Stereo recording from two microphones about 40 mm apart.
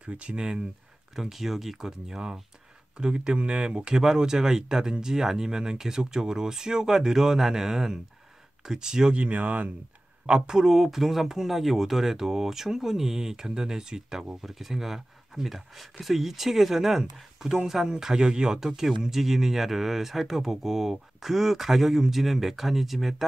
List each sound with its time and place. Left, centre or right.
0.0 s speech: right
1.1 s speech: centre
9.1 s speech: right
10.2 s speech: centre